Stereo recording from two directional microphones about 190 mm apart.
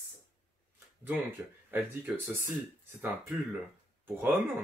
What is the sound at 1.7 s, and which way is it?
Speech, 10° right (ahead or behind).